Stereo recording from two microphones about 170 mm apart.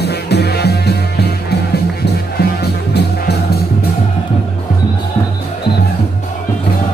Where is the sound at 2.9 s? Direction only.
70° left (ahead or behind).